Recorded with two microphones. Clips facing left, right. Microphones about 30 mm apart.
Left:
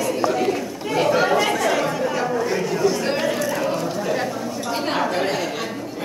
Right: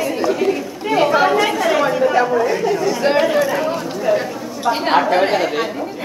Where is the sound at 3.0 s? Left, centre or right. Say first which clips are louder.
Right 7 dB; centre.